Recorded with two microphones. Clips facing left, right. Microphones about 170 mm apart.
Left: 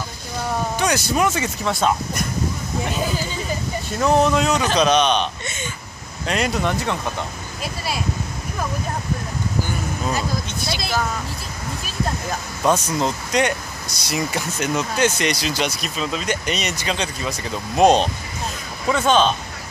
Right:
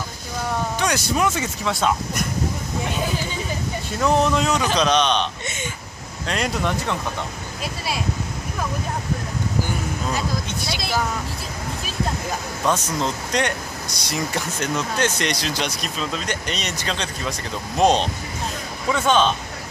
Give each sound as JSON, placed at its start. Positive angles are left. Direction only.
{"t": 0.7, "sound": "speech", "side_deg": 5}
{"t": 4.0, "sound": "speech", "side_deg": 5}
{"t": 12.6, "sound": "speech", "side_deg": 10}